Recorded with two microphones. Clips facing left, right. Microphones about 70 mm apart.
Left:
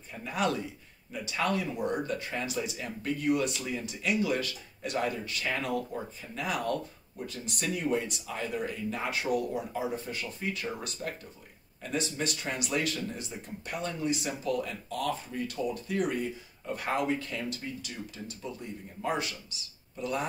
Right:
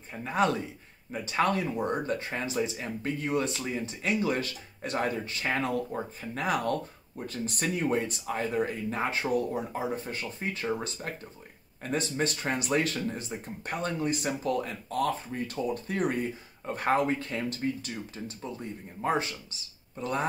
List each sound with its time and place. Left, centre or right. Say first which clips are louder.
0.2 s speech: right 3 dB; right